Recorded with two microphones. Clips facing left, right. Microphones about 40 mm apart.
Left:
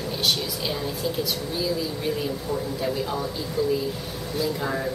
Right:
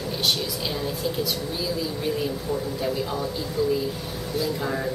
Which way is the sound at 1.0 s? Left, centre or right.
Centre.